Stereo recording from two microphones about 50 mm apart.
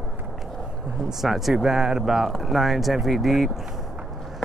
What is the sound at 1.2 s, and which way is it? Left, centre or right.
Speech, centre.